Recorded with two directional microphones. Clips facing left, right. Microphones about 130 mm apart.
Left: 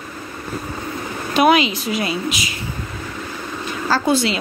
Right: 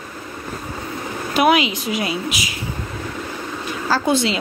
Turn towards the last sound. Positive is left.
turn(degrees=-20)  # may be behind; listen again after turning